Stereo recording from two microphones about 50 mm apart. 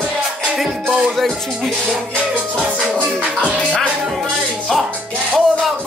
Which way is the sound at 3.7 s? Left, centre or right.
Centre.